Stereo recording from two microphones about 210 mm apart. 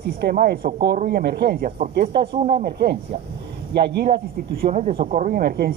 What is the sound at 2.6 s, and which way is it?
A man's voice, 50° right (ahead or behind).